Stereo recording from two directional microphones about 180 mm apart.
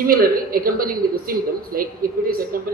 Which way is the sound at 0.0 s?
55° right (ahead or behind).